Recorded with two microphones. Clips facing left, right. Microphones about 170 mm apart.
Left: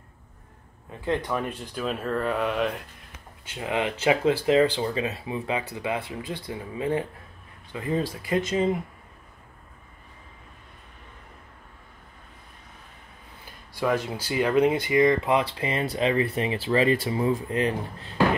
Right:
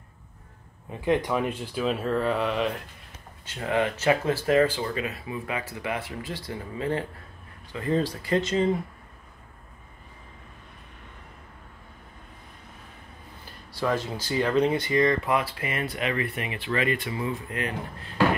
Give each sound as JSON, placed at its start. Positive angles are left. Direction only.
{"t": 1.0, "sound": "speech", "side_deg": -15}
{"t": 3.4, "sound": "speech", "side_deg": 15}
{"t": 13.7, "sound": "speech", "side_deg": 15}